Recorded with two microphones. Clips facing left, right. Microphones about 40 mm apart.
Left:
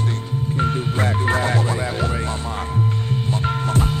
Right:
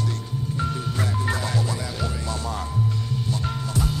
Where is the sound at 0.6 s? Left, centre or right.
Left.